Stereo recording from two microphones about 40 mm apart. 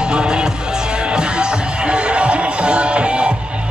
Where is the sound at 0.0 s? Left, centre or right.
Centre.